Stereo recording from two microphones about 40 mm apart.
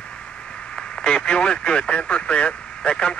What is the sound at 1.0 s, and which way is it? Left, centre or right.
Speech, left.